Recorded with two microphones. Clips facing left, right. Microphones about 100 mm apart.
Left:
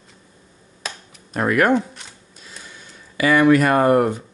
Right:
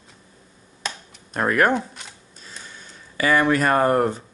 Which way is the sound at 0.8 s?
5° left (ahead or behind).